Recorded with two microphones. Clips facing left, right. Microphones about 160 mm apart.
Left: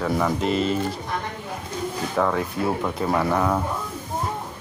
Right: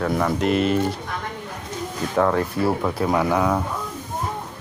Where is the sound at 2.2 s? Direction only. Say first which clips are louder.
Right 3 dB; centre (ahead or behind).